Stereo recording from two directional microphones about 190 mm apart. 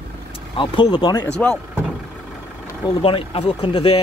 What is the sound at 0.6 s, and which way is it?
Speech, 25° left (ahead or behind).